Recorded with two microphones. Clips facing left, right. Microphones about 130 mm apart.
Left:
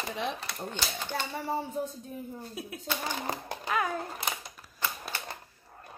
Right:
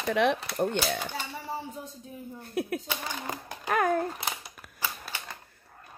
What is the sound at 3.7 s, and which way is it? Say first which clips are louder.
Babbling: right 5 dB; 50° right (ahead or behind).